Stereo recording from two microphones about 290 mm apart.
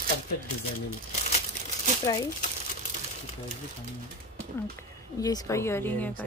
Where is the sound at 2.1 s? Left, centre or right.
Centre.